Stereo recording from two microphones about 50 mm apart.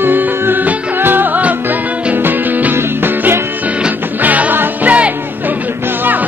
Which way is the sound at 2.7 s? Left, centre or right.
Right.